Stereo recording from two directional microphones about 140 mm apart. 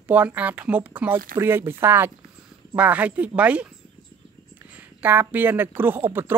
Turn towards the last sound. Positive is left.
turn(degrees=-15)  # may be behind; listen again after turning